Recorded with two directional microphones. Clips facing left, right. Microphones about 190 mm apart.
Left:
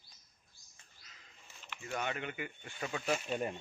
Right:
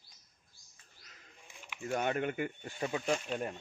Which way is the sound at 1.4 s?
15° right (ahead or behind).